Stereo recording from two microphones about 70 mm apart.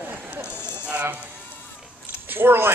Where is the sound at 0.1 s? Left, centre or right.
Right.